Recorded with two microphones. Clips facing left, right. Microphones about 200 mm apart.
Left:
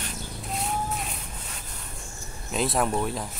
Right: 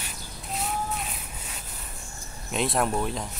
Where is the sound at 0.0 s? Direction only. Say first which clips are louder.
Left 5 dB; centre (ahead or behind).